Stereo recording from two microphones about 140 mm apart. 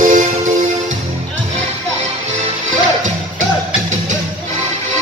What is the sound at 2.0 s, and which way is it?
Music, 55° right (ahead or behind).